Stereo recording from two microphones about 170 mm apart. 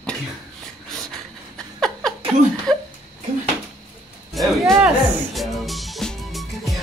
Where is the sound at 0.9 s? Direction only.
Centre (ahead or behind).